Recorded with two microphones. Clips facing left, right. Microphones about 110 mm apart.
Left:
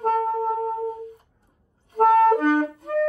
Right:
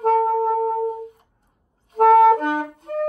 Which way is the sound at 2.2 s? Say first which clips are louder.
Right 1 dB; 65° right (ahead or behind).